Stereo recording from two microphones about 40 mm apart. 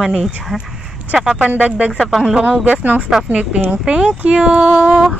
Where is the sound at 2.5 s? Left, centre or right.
Right.